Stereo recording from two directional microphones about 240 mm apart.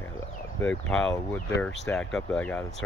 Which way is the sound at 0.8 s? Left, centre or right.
Centre.